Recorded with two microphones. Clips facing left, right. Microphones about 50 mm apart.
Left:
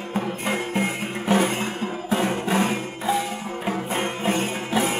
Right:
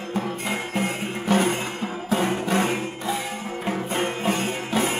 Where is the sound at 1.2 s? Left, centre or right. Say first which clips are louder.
Even; centre.